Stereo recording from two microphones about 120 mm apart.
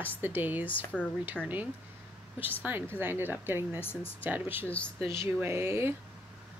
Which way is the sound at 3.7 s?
20° left (ahead or behind).